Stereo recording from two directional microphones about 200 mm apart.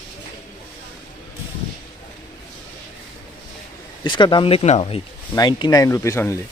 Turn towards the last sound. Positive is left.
turn(degrees=15)  # may be behind; listen again after turning